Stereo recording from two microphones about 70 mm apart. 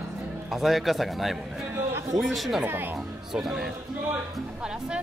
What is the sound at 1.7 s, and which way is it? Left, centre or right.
Speech, right.